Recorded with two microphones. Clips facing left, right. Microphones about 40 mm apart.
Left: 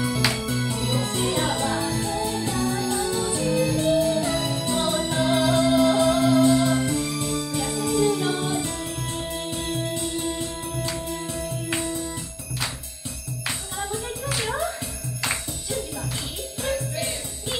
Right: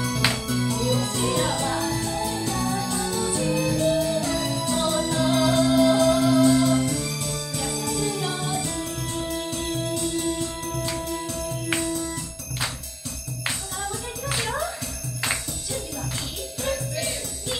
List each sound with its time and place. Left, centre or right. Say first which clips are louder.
0.5 s music: right 2 dB; left
16.6 s music: left 1 dB; left